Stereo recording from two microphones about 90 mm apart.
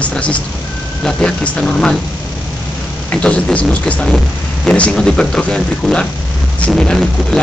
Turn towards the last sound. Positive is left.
turn(degrees=5)  # may be behind; listen again after turning